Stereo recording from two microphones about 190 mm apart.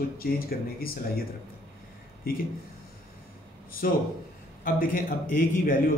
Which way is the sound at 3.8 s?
50° left (ahead or behind).